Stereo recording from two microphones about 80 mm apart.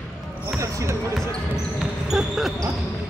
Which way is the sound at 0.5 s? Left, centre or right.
Right.